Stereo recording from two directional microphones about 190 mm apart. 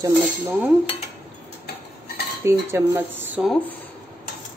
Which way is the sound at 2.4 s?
15° right (ahead or behind).